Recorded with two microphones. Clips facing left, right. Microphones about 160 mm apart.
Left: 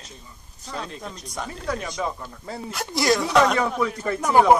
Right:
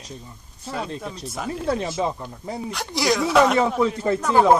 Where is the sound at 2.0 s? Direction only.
20° right (ahead or behind).